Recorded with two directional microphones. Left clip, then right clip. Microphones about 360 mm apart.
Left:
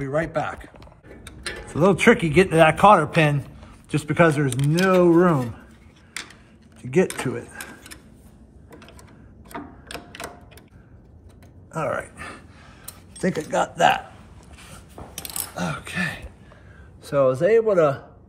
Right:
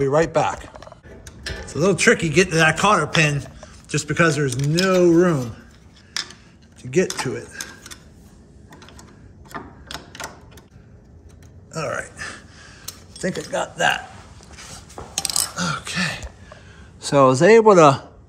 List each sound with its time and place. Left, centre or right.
0.1 s speech: centre
1.7 s a man's voice: centre
6.9 s a man's voice: centre
11.7 s a sound: centre
13.2 s a man's voice: centre
15.5 s a sound: centre
17.0 s speech: centre